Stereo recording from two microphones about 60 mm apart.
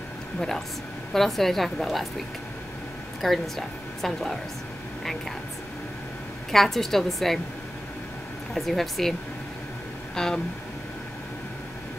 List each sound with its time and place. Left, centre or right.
0.4 s a woman's voice: centre
3.2 s a woman's voice: centre
6.5 s a woman's voice: centre
8.5 s a woman's voice: centre
10.1 s a sound: centre